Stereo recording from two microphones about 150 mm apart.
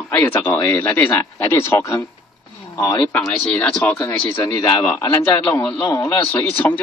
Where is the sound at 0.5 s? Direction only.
10° left (ahead or behind).